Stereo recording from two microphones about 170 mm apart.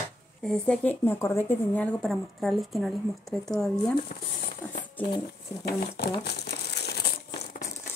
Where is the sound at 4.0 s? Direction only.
55° left (ahead or behind).